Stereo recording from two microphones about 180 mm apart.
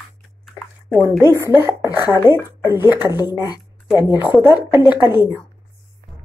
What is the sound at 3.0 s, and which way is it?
Speech, 20° left (ahead or behind).